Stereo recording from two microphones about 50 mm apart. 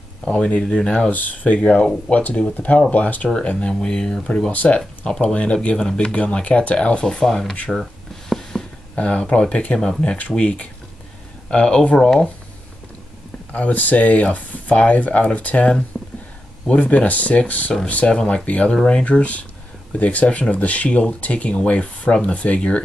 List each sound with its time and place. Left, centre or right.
0.2 s speech: centre
1.1 s speech: left
4.5 s speech: left
4.7 s speech: centre
7.7 s a sound: centre
8.9 s speech: left
9.8 s speech: centre
10.1 s speech: left
13.5 s speech: left
15.9 s a sound: centre
16.6 s speech: left
18.1 s speech: centre